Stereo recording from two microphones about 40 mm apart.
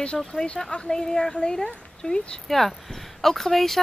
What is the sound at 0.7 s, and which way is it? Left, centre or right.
Speech, left.